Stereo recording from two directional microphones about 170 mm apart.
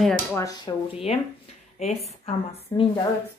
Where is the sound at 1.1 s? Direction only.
40° left (ahead or behind).